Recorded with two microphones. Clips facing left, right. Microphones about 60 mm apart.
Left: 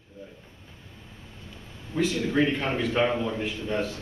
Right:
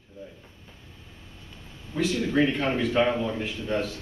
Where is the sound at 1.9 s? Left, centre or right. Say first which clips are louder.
Even; centre.